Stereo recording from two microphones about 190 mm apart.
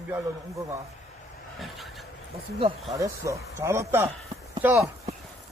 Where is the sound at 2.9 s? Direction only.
15° right (ahead or behind).